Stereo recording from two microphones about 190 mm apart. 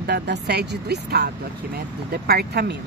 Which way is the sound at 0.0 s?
60° right (ahead or behind).